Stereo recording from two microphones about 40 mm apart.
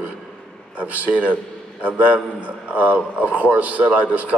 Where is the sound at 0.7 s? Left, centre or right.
Right.